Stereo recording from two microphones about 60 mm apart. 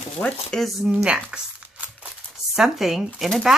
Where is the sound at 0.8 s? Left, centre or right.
Centre.